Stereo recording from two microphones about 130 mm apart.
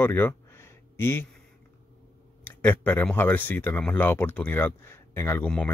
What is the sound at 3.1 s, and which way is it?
Speech, 15° left (ahead or behind).